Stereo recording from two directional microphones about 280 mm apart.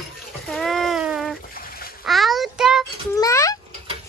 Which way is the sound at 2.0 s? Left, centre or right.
Centre.